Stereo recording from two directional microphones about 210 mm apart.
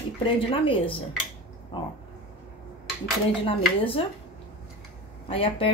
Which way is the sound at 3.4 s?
25° left (ahead or behind).